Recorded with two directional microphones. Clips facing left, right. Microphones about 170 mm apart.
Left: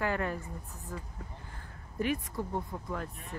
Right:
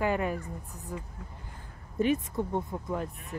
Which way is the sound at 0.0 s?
15° right (ahead or behind).